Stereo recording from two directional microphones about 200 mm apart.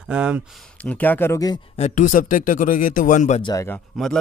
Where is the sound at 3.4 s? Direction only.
15° left (ahead or behind).